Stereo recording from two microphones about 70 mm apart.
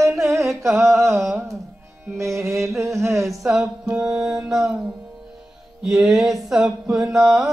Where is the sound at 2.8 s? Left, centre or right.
Right.